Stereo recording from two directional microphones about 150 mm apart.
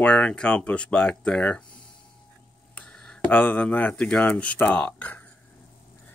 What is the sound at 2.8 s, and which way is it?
Speech, 10° left (ahead or behind).